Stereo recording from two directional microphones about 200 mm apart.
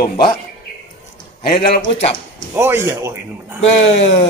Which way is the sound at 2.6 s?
10° right (ahead or behind).